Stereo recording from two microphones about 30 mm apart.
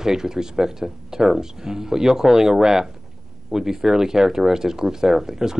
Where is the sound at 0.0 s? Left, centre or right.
Centre.